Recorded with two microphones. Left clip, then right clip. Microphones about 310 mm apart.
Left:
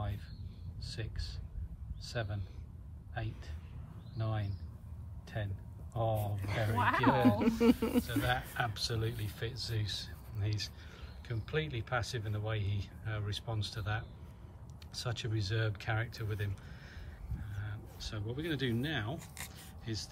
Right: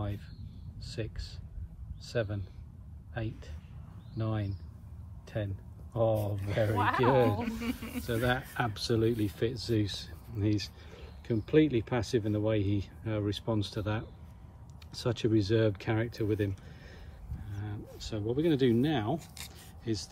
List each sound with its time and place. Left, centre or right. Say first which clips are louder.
0.8 s speech: right 5 dB; centre
7.3 s speech: left 7 dB; centre
8.0 s speech: right 3 dB; centre
17.6 s speech: right 5 dB; centre
19.1 s a sound: right 6 dB; centre
19.8 s speech: right 7 dB; centre